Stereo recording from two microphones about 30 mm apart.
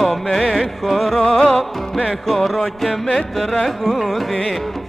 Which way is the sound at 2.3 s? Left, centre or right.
Centre.